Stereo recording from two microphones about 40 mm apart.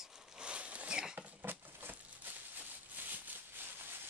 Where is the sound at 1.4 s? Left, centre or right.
Right.